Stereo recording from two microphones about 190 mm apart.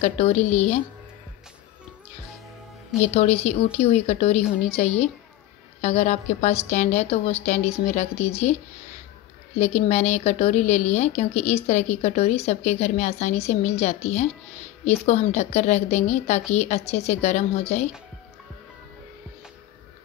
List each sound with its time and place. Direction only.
0.0 s speech: 35° left (ahead or behind)
3.0 s speech: 35° left (ahead or behind)
9.6 s speech: 35° left (ahead or behind)